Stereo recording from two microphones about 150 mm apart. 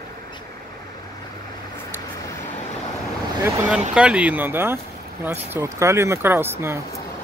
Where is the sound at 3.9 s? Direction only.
5° right (ahead or behind).